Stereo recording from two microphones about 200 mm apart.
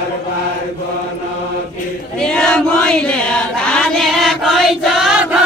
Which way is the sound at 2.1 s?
5° left (ahead or behind).